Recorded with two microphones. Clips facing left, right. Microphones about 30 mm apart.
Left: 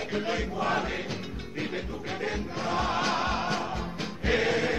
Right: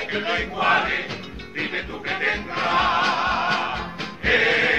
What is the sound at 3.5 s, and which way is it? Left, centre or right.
Music, right.